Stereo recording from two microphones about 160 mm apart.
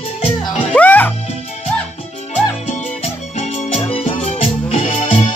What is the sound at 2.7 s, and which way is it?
Music, 45° left (ahead or behind).